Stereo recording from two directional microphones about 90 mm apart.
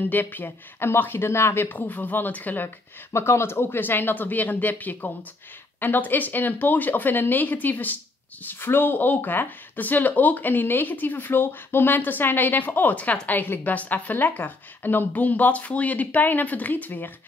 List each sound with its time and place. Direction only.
0.1 s speech: 20° left (ahead or behind)
3.1 s speech: 30° left (ahead or behind)